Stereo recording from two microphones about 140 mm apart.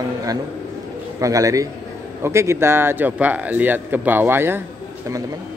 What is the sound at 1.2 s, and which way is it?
A man's voice, 25° right (ahead or behind).